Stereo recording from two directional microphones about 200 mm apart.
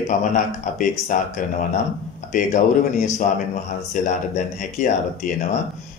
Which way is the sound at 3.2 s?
40° left (ahead or behind).